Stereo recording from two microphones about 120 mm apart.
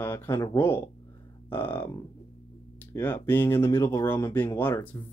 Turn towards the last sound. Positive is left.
turn(degrees=20)  # may be behind; listen again after turning